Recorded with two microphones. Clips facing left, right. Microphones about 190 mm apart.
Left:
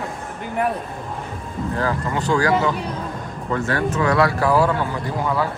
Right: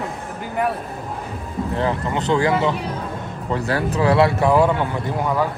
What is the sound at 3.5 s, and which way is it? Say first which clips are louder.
Speech: even; 35° right (ahead or behind).